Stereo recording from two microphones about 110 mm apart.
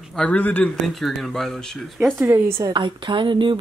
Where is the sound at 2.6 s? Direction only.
45° right (ahead or behind).